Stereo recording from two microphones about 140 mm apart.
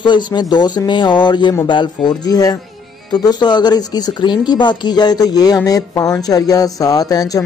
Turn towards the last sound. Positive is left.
turn(degrees=25)  # may be behind; listen again after turning